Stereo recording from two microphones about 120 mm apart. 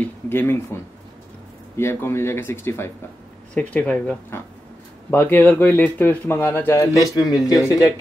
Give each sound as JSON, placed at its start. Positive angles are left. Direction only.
{"t": 0.0, "sound": "speech", "side_deg": 15}
{"t": 1.8, "sound": "speech", "side_deg": 20}